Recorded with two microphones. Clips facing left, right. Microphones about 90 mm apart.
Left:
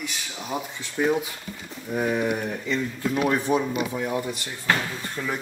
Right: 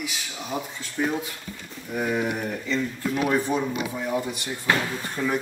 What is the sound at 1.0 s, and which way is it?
Speech, 10° left (ahead or behind).